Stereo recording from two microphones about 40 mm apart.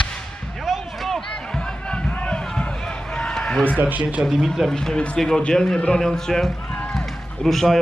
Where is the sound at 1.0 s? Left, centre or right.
Centre.